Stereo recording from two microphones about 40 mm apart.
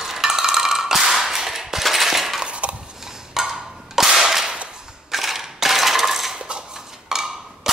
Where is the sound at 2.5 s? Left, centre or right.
Right.